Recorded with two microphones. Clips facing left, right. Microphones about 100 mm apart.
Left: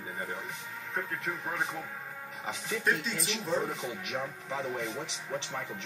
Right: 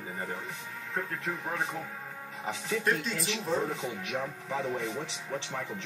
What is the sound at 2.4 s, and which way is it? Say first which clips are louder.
Speech: right 3 dB; 15° left (ahead or behind).